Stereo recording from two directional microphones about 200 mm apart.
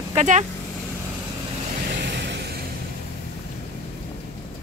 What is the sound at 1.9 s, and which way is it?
Vehicle, 55° right (ahead or behind).